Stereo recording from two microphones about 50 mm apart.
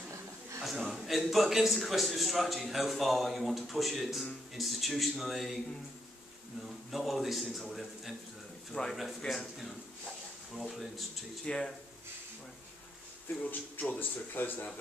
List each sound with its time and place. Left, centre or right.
0.6 s chuckle: centre
0.9 s a man's voice: centre
6.9 s a man's voice: centre
8.7 s speech: centre
10.5 s a man's voice: centre
11.4 s speech: centre
13.4 s speech: left